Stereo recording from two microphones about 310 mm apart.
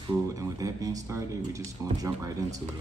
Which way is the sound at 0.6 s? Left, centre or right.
Centre.